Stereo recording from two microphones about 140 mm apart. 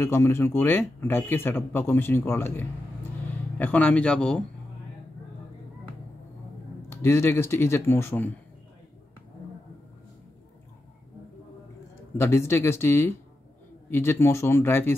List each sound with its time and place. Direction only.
0.0 s speech: 20° left (ahead or behind)
6.9 s speech: 20° left (ahead or behind)
12.2 s speech: 20° left (ahead or behind)